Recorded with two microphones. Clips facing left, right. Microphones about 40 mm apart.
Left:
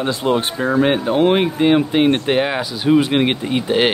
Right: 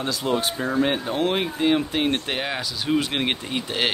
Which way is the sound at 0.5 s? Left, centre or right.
Left.